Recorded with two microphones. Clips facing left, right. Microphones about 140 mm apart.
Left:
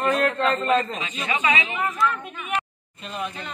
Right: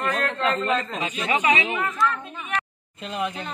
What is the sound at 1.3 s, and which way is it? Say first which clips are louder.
Speech: right 2 dB; 40° right (ahead or behind).